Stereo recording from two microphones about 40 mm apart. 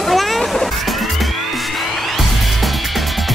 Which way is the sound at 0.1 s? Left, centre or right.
Centre.